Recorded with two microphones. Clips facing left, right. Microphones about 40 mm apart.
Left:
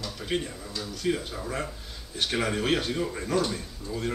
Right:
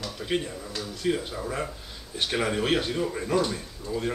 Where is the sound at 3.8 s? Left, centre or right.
Centre.